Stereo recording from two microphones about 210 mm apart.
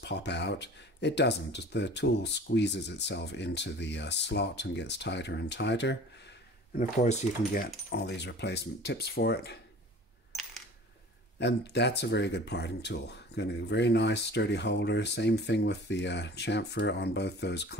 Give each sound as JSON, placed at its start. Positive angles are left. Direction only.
{"t": 0.0, "sound": "speech", "side_deg": 55}
{"t": 6.8, "sound": "speech", "side_deg": 35}
{"t": 11.3, "sound": "speech", "side_deg": 55}